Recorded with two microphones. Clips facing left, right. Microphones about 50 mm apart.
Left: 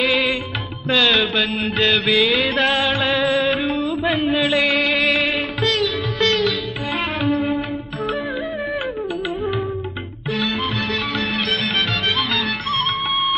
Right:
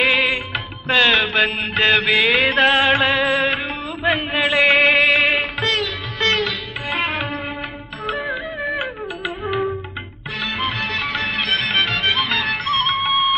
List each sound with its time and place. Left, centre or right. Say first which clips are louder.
0.0 s music: right 1 dB; right
3.4 s music: left 2 dB; centre
4.2 s chant: even; right
5.0 s music: right 3 dB; right